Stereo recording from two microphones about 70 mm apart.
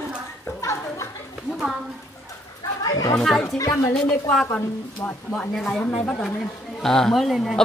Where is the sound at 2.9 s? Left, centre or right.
Left.